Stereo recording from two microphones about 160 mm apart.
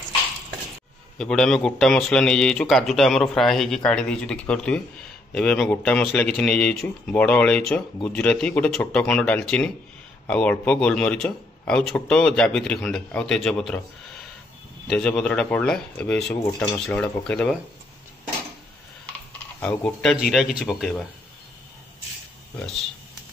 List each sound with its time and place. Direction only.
1.1 s a man's voice: 5° left (ahead or behind)
14.9 s speech: 5° left (ahead or behind)
19.6 s a man's voice: 5° left (ahead or behind)